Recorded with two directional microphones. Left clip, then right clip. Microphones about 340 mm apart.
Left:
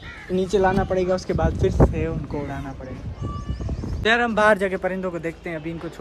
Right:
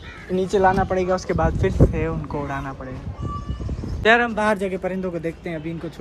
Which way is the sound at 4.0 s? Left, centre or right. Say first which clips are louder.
Right 3 dB; centre.